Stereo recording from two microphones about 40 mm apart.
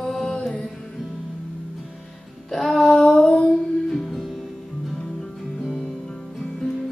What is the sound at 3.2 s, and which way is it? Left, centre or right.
Music, left.